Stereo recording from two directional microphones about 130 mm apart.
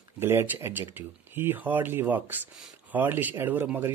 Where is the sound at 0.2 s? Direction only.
20° right (ahead or behind).